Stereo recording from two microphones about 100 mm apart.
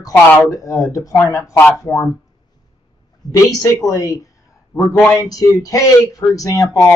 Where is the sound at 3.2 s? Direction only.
40° left (ahead or behind).